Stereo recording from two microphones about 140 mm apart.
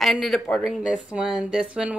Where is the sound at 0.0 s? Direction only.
Centre (ahead or behind).